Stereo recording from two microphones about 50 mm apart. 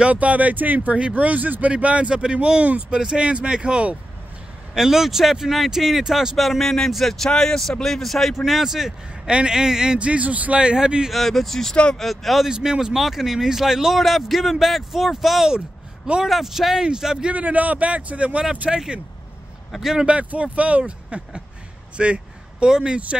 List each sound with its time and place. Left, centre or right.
0.0 s speech: right
4.7 s speech: centre
9.9 s speech: right
10.6 s speech: centre
11.1 s speech: centre
11.7 s speech: left
12.0 s speech: centre
12.4 s speech: centre
17.3 s speech: right
19.8 s speech: centre
20.1 s speech: right
21.9 s a sound: right
22.7 s speech: centre